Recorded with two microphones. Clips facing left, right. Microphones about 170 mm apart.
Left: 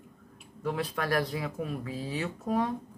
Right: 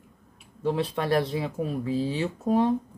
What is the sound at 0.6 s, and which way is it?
Speech, 25° right (ahead or behind).